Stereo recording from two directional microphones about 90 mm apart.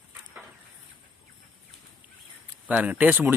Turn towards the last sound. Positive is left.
turn(degrees=-20)  # may be behind; listen again after turning